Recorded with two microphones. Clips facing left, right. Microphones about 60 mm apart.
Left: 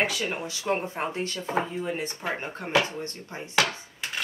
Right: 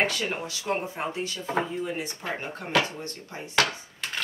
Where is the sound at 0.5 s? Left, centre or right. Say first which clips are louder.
Left 1 dB; left.